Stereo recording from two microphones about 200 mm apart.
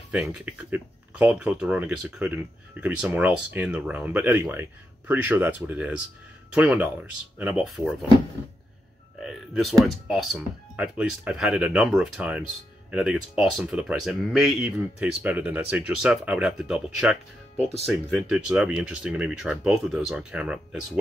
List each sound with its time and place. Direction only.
0.1 s speech: 5° right (ahead or behind)
9.2 s speech: centre (ahead or behind)
18.3 s speech: 5° right (ahead or behind)